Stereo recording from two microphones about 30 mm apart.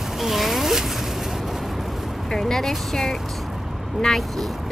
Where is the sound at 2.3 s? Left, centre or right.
Centre.